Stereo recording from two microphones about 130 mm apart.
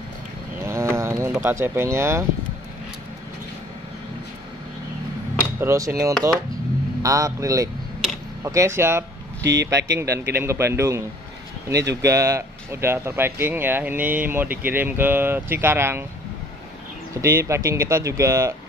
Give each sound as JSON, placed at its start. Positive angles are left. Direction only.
{"t": 0.7, "sound": "a sound", "side_deg": -20}
{"t": 1.4, "sound": "speech", "side_deg": -20}
{"t": 5.6, "sound": "speech", "side_deg": -20}
{"t": 17.1, "sound": "speech", "side_deg": -20}